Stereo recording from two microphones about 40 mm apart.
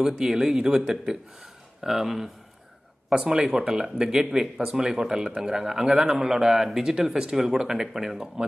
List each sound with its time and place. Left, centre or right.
0.0 s speech: centre
1.8 s speech: centre